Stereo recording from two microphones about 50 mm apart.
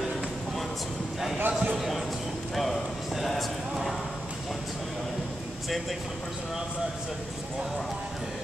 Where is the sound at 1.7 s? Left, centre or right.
Centre.